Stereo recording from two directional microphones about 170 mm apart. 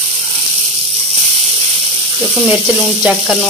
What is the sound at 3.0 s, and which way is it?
Speech, 5° right (ahead or behind).